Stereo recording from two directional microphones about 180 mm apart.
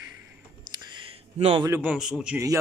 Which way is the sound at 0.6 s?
20° right (ahead or behind).